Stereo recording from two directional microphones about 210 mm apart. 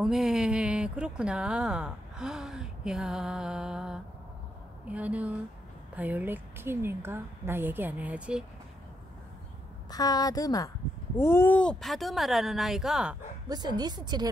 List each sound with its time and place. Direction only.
0.0 s a woman's voice: centre (ahead or behind)
9.8 s a woman's voice: 20° left (ahead or behind); by 13.2 s 5° right (ahead or behind)
13.5 s speech: 20° right (ahead or behind)